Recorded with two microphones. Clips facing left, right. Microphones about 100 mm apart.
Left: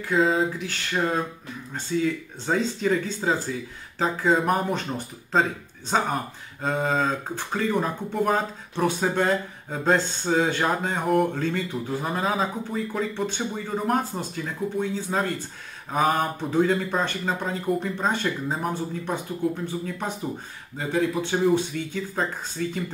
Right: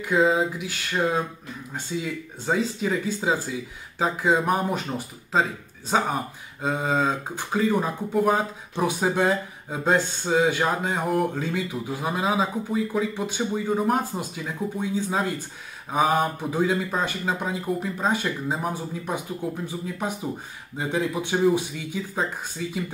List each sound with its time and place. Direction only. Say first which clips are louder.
0.1 s a man's voice: right 1 dB; 5° right (ahead or behind)